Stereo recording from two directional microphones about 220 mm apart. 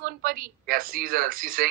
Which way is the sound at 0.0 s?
40° right (ahead or behind).